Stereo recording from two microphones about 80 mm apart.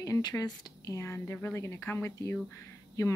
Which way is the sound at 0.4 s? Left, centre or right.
Left.